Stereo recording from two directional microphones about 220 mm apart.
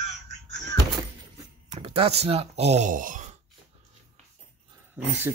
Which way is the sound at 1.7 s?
25° right (ahead or behind).